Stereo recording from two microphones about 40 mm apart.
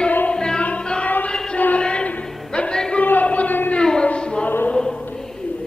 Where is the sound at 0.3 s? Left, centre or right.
Centre.